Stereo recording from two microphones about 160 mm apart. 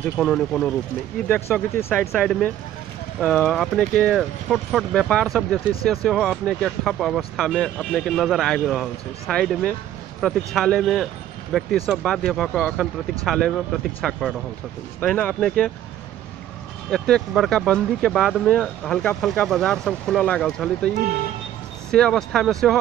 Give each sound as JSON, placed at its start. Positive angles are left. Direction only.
{"t": 0.0, "sound": "speech", "side_deg": 5}
{"t": 1.3, "sound": "speech", "side_deg": 15}
{"t": 15.0, "sound": "speech", "side_deg": 10}
{"t": 16.9, "sound": "speech", "side_deg": 5}
{"t": 21.9, "sound": "speech", "side_deg": 5}